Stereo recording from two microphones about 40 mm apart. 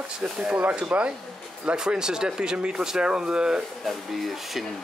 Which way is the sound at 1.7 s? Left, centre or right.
Centre.